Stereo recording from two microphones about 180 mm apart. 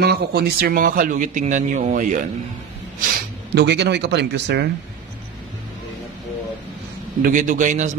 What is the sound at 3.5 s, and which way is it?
Speech, 70° right (ahead or behind).